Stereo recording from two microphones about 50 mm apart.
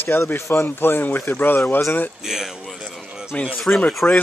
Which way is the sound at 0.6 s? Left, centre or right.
Left.